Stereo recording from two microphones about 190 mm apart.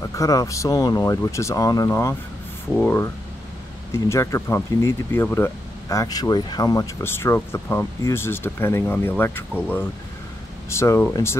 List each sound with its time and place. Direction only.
0.0 s speech: 15° left (ahead or behind)